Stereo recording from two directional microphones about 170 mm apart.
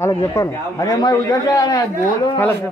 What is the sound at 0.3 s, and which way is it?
A man's voice, 15° left (ahead or behind).